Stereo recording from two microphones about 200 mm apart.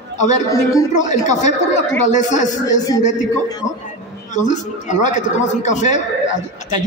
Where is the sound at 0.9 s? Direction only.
35° left (ahead or behind).